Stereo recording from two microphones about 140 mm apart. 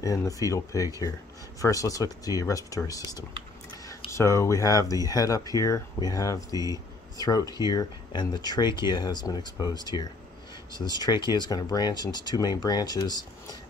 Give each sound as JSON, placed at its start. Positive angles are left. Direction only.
{"t": 0.0, "sound": "speech", "side_deg": 25}
{"t": 6.5, "sound": "speech", "side_deg": -25}
{"t": 7.2, "sound": "speech", "side_deg": 25}